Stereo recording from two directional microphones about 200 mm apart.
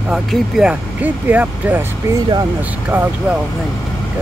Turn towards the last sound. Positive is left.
turn(degrees=-5)  # may be behind; listen again after turning